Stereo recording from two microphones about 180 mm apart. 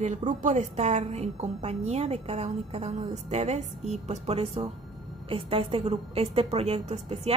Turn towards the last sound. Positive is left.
turn(degrees=-35)  # may be behind; listen again after turning